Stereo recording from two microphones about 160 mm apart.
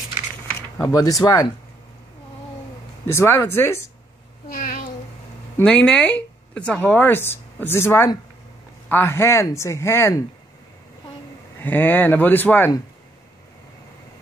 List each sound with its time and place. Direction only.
0.8 s speech: 20° left (ahead or behind)
3.1 s speech: 15° left (ahead or behind)
4.5 s a sound: 60° left (ahead or behind)
5.6 s speech: 5° left (ahead or behind)
11.6 s speech: 10° left (ahead or behind)